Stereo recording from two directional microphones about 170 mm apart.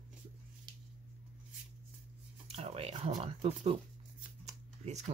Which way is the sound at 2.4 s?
35° right (ahead or behind).